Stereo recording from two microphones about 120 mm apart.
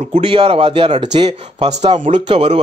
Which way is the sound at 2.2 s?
50° right (ahead or behind).